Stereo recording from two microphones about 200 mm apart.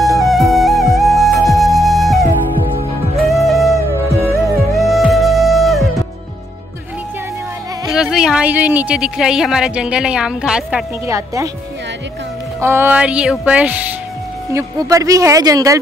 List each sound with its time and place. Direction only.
0.1 s music: centre (ahead or behind)
7.9 s speech: 5° right (ahead or behind)
11.1 s speech: 15° right (ahead or behind)
12.5 s speech: 10° right (ahead or behind)